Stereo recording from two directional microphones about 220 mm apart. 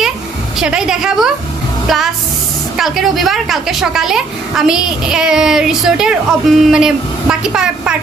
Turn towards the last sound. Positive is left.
turn(degrees=-5)  # may be behind; listen again after turning